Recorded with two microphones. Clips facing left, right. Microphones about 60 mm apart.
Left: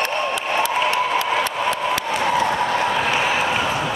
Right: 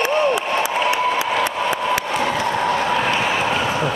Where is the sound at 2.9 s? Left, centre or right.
Centre.